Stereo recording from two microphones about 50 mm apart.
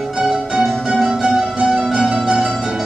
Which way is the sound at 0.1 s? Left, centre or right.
Centre.